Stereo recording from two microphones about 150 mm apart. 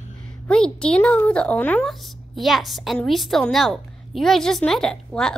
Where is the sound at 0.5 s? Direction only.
5° left (ahead or behind).